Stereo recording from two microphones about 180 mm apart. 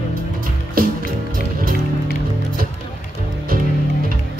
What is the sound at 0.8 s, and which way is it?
Music, 55° right (ahead or behind).